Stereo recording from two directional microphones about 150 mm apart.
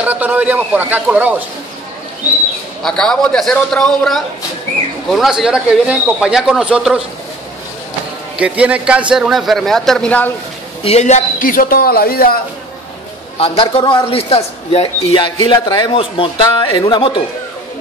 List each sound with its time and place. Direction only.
0.0 s a man's voice: 10° right (ahead or behind)
2.8 s speech: 5° left (ahead or behind)
8.4 s a man's voice: 10° right (ahead or behind); by 10.3 s 10° left (ahead or behind)
10.8 s speech: 45° left (ahead or behind); by 12.4 s 85° left
13.4 s speech: 35° left (ahead or behind)